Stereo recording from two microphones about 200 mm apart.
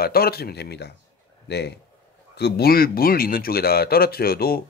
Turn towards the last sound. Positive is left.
turn(degrees=50)  # may be behind; listen again after turning